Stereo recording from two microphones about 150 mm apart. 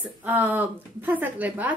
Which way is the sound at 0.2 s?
10° right (ahead or behind).